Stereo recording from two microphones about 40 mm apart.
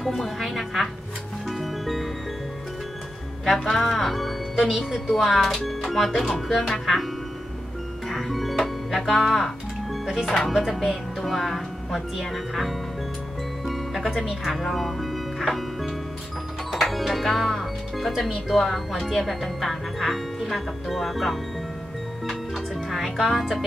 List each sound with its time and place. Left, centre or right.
0.0 s a woman's voice: centre
1.5 s music: centre
3.5 s speech: centre
5.0 s speech: centre
5.7 s music: centre
6.7 s speech: centre
8.1 s music: centre
9.0 s speech: centre
13.7 s music: centre
14.4 s speech: centre